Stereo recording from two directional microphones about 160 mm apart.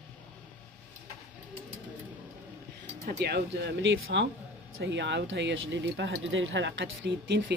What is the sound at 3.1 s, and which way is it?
Speech, 90° right.